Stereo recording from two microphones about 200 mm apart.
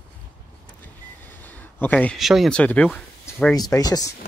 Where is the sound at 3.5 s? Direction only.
20° left (ahead or behind).